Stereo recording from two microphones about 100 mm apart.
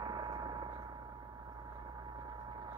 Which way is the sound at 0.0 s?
40° right (ahead or behind).